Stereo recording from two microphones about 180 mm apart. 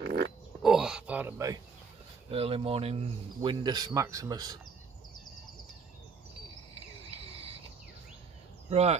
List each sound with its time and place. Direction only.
0.0 s pig: 65° right (ahead or behind)
0.6 s a sound: 5° right (ahead or behind)
2.3 s speech: 35° right (ahead or behind)
3.5 s speech: 20° right (ahead or behind)
8.6 s speech: 35° right (ahead or behind)